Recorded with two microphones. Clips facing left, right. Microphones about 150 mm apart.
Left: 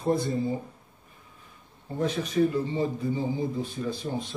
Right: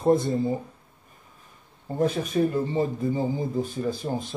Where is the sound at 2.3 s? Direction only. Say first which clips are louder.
Right 1 dB; 40° right (ahead or behind).